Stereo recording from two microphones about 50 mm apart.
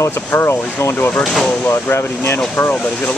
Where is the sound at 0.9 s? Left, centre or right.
Left.